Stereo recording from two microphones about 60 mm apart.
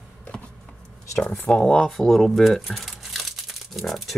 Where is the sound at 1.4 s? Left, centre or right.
Centre.